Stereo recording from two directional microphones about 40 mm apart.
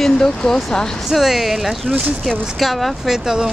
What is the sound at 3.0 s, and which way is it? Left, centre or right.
Speech, centre.